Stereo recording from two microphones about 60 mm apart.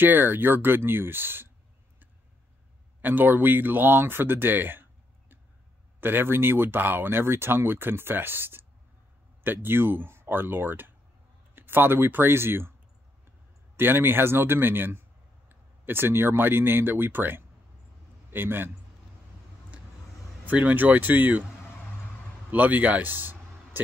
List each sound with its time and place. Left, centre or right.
0.0 s speech: right
3.0 s speech: right
5.9 s speech: right
13.7 s speech: right
20.4 s speech: right
22.5 s speech: right